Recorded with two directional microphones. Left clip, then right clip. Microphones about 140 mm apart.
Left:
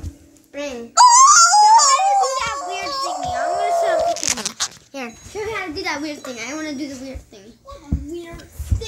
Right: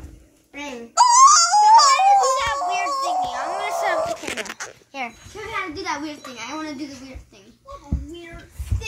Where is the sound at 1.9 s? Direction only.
35° right (ahead or behind).